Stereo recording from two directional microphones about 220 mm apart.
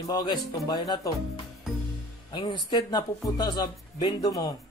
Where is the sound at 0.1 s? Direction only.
15° left (ahead or behind).